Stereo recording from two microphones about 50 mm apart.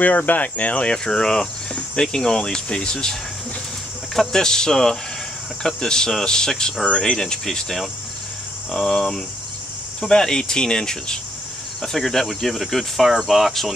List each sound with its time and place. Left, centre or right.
0.0 s speech: left; by 13.7 s centre